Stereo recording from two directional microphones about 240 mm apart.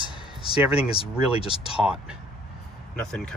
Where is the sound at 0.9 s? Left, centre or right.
Left.